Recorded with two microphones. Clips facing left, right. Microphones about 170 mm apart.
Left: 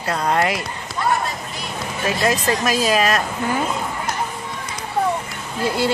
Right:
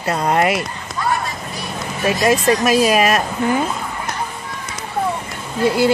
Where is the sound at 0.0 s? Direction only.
20° right (ahead or behind).